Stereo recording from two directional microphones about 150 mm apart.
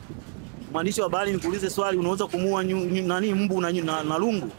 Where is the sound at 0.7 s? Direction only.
15° right (ahead or behind).